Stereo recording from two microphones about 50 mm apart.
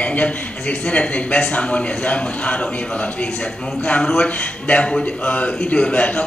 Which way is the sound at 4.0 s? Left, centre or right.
Centre.